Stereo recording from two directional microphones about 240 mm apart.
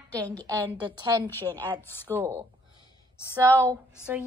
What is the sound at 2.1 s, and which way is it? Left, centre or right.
Speech, centre.